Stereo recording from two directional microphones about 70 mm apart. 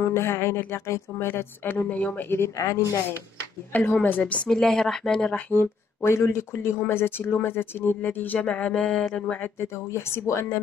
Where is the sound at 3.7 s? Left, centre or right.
Left.